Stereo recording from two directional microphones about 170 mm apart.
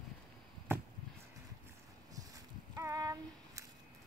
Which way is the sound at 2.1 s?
20° right (ahead or behind).